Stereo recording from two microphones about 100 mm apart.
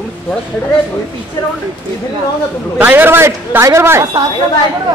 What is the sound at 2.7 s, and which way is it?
A man's voice, 20° right (ahead or behind).